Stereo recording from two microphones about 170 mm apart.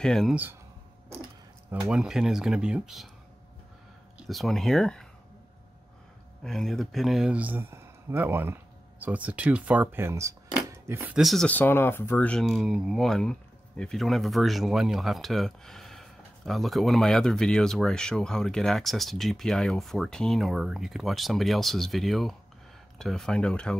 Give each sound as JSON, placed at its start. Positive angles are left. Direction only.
{"t": 0.0, "sound": "speech", "side_deg": 0}
{"t": 1.7, "sound": "speech", "side_deg": -5}
{"t": 4.3, "sound": "speech", "side_deg": 0}
{"t": 6.4, "sound": "speech", "side_deg": 5}
{"t": 11.1, "sound": "speech", "side_deg": 0}